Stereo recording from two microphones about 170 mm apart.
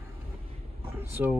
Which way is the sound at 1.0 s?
15° right (ahead or behind).